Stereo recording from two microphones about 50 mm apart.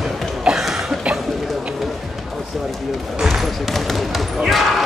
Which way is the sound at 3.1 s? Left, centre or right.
Centre.